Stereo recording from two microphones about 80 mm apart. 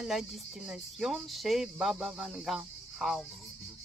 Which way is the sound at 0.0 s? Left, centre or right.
Centre.